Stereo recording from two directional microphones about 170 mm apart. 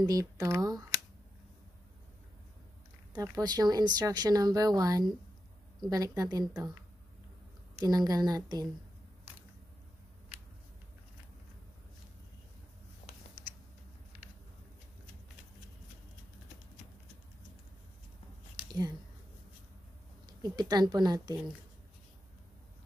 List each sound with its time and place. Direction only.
0.0 s speech: 20° right (ahead or behind)
3.1 s speech: 25° right (ahead or behind)
7.8 s speech: 25° right (ahead or behind)
18.7 s a sound: 25° right (ahead or behind)
20.4 s speech: 25° right (ahead or behind)